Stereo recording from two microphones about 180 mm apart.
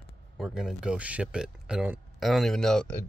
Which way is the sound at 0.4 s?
Centre (ahead or behind).